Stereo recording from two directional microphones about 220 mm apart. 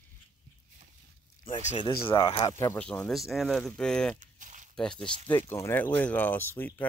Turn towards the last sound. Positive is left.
turn(degrees=10)  # may be behind; listen again after turning